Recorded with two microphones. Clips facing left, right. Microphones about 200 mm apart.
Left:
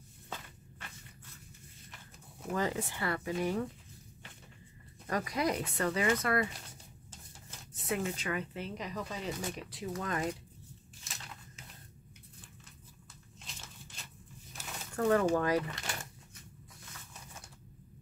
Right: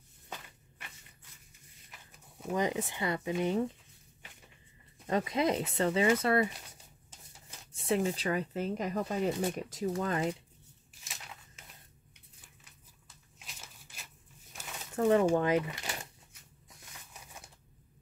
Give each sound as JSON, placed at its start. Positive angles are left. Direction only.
{"t": 2.5, "sound": "speech", "side_deg": -20}
{"t": 5.0, "sound": "speech", "side_deg": -25}
{"t": 7.7, "sound": "speech", "side_deg": -30}
{"t": 13.4, "sound": "a sound", "side_deg": -5}
{"t": 15.0, "sound": "speech", "side_deg": -20}